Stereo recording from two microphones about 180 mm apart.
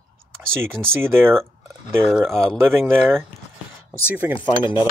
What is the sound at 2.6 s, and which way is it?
Speech, 15° right (ahead or behind).